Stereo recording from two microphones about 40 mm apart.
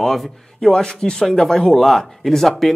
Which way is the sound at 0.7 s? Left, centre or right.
Centre.